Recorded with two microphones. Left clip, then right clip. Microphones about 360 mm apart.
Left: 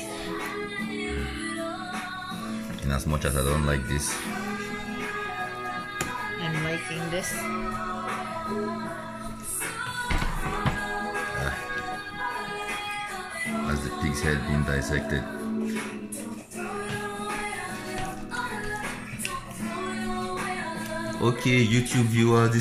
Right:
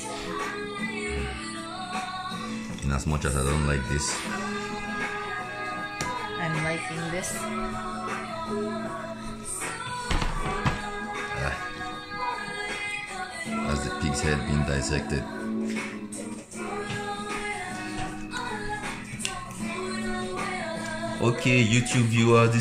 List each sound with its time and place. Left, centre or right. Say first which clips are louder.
2.9 s speech: left 1 dB; centre
13.7 s speech: right 1 dB; centre
21.2 s speech: even; centre